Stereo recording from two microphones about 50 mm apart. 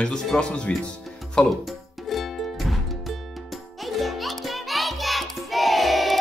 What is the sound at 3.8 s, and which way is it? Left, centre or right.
Music, centre.